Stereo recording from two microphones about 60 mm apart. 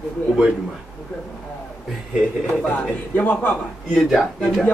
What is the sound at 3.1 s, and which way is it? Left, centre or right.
Speech, left.